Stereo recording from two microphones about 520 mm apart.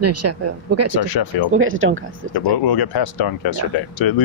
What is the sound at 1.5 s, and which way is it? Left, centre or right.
Speech, right.